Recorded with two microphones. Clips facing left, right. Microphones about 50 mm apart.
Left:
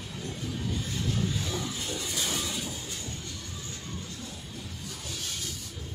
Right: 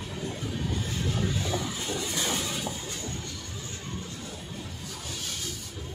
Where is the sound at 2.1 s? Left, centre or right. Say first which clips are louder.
Right 2 dB; right.